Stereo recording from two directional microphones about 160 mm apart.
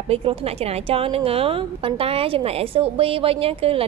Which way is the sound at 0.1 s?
35° right (ahead or behind).